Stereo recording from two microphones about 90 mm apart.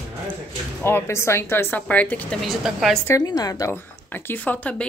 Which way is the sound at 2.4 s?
Centre (ahead or behind).